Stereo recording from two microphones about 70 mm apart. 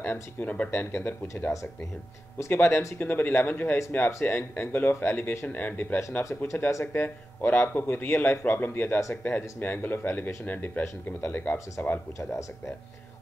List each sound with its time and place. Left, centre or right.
0.0 s speech: left
2.5 s speech: left
6.2 s speech: left
12.2 s speech: left